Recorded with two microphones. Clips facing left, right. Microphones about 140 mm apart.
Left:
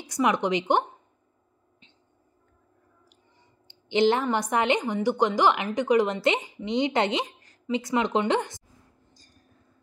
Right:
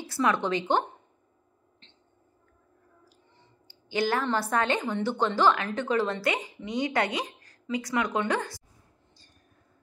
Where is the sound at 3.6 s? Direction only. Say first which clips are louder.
Left 7 dB; 20° left (ahead or behind).